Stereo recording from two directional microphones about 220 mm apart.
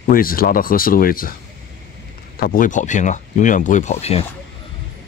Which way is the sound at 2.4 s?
40° left (ahead or behind).